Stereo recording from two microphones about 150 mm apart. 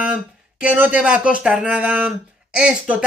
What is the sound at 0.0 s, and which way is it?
Speech, 10° right (ahead or behind).